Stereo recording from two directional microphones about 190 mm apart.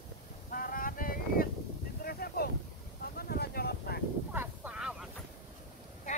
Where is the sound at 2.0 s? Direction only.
55° left (ahead or behind).